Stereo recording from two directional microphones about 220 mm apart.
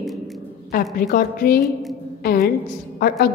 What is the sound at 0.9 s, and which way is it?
Speech, 40° left (ahead or behind).